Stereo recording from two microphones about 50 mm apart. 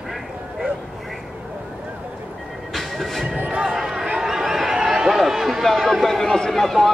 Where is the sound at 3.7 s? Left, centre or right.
Centre.